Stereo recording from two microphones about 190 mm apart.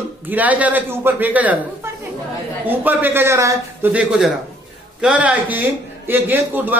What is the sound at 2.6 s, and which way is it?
A man's voice, 10° right (ahead or behind).